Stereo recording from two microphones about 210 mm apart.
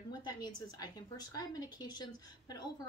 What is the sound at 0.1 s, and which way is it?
A woman's voice, 20° left (ahead or behind).